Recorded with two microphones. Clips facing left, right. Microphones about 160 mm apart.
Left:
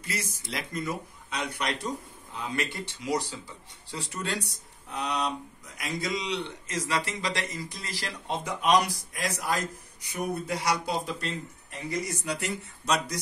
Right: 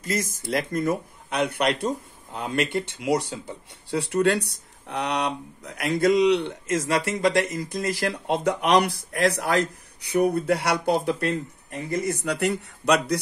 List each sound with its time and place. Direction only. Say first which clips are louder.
0.0 s speech: right 8 dB; 45° right (ahead or behind); by 13.2 s 65° right (ahead or behind)